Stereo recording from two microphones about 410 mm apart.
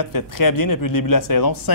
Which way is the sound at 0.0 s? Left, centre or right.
Left.